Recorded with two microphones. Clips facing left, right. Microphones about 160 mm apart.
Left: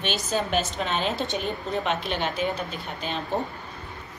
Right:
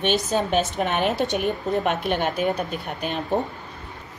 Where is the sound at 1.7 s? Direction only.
50° right (ahead or behind).